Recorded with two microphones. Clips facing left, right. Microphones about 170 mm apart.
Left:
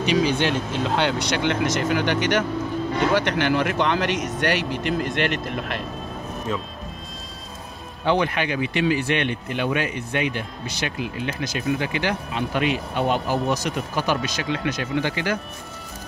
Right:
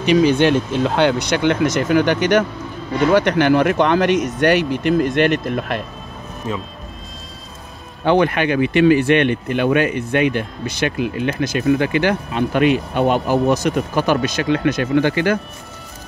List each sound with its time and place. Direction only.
0.0 s speech: 55° right (ahead or behind)
6.5 s speech: 5° right (ahead or behind)
8.0 s speech: 60° right (ahead or behind)